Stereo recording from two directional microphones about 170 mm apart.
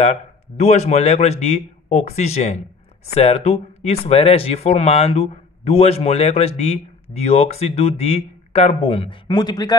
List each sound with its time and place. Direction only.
0.0 s speech: 40° left (ahead or behind); by 9.8 s 25° left (ahead or behind)